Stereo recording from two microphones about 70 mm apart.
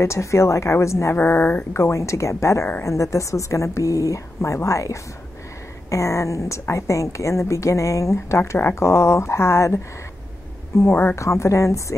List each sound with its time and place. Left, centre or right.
0.0 s a woman's voice: left
1.1 s a woman's voice: left
10.9 s speech: left
11.1 s a woman's voice: left